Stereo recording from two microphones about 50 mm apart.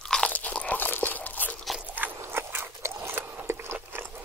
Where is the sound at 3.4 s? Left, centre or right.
Right.